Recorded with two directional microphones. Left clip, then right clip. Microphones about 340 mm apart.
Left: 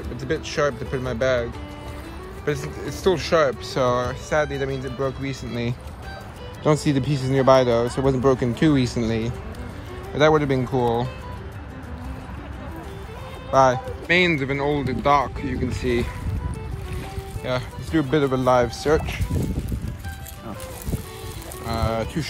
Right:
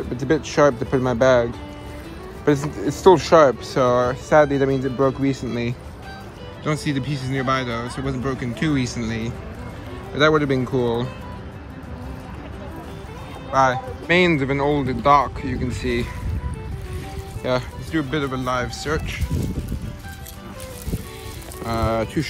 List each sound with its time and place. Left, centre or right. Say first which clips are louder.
0.2 s speech: right 6 dB; centre
2.4 s speech: right 7 dB; centre
13.5 s speech: left 1 dB; centre
17.4 s speech: right 4 dB; centre
21.6 s a sound: right 3 dB; centre